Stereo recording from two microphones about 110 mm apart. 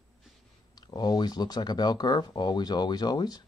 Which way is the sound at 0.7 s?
40° left (ahead or behind).